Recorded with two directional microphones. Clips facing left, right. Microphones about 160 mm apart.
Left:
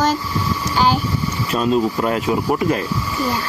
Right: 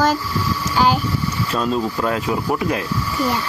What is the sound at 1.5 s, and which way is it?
Speech, 10° left (ahead or behind).